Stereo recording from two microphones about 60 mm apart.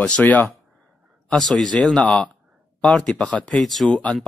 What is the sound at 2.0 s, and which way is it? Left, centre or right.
A man's voice, left.